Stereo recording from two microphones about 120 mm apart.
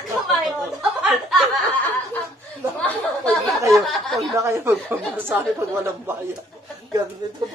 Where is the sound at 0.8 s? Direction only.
5° right (ahead or behind).